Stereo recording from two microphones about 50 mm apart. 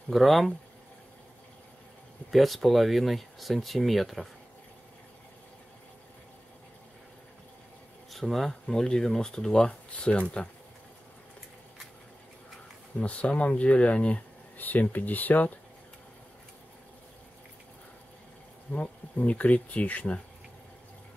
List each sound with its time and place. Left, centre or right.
0.1 s speech: centre
2.3 s speech: centre
8.1 s speech: centre
13.0 s speech: left
14.6 s speech: left
18.7 s speech: left